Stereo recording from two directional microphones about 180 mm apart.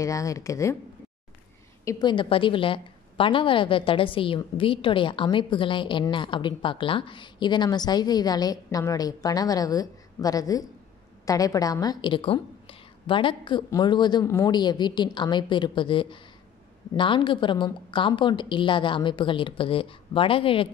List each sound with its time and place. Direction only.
0.0 s speech: 20° left (ahead or behind)
1.9 s a woman's voice: 25° left (ahead or behind)